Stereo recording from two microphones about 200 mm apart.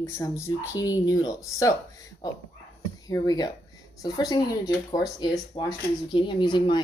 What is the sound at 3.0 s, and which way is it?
Speech, 20° left (ahead or behind).